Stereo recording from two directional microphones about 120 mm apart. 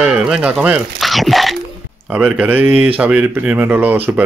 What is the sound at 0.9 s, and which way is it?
Dog, centre (ahead or behind).